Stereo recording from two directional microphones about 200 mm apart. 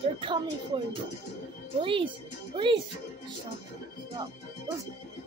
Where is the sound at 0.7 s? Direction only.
25° right (ahead or behind).